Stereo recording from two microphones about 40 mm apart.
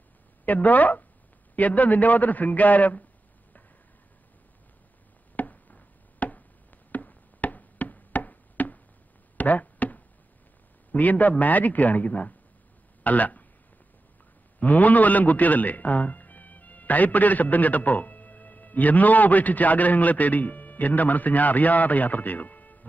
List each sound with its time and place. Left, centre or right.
0.5 s a man's voice: left
5.3 s a sound: left
10.9 s a man's voice: left
14.6 s a man's voice: left